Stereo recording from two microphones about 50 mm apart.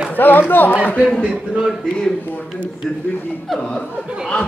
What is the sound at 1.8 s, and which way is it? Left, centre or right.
Speech, centre.